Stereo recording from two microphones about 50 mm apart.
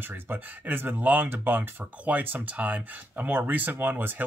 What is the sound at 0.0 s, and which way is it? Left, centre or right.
Speech, right.